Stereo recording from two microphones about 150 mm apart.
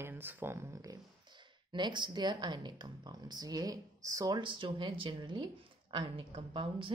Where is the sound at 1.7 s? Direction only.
30° right (ahead or behind).